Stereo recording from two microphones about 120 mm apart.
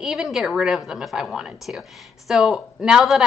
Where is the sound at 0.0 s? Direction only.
Centre (ahead or behind).